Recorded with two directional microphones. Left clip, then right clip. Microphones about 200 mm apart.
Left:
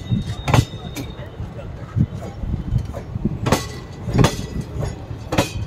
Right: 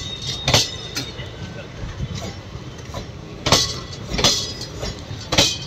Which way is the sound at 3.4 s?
55° left (ahead or behind).